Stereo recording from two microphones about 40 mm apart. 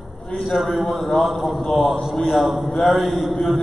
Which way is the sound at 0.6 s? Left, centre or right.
Centre.